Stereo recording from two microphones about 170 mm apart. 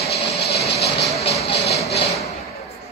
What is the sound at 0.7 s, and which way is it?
Vehicle, 75° left (ahead or behind).